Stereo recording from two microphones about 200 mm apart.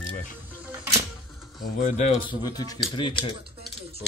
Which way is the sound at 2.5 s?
20° left (ahead or behind).